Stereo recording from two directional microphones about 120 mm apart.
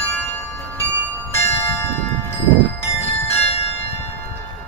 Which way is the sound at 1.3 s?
20° left (ahead or behind).